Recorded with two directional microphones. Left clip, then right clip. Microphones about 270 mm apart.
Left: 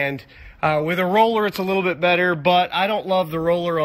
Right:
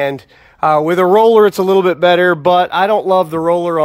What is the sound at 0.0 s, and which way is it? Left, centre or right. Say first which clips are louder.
Speech: right 7 dB; centre.